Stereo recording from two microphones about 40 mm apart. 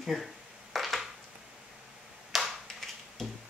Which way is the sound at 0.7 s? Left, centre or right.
Centre.